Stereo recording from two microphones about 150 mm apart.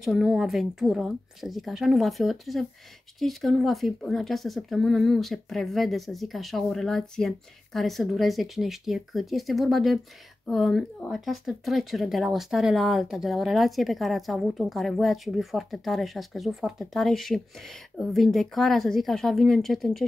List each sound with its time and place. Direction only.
0.0 s speech: centre (ahead or behind)